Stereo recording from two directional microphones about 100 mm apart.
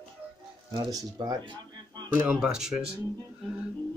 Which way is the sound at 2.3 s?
5° right (ahead or behind).